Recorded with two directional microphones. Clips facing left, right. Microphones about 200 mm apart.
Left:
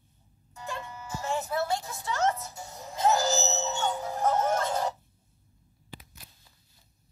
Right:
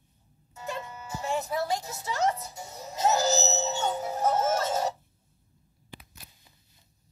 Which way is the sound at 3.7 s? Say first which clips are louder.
Right 1 dB; 20° right (ahead or behind).